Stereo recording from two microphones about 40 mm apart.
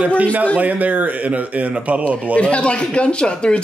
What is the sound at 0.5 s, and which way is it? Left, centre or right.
Speech, right.